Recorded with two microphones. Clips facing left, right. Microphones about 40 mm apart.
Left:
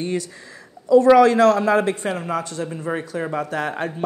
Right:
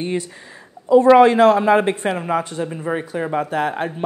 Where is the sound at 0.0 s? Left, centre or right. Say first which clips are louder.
Right 1 dB; right.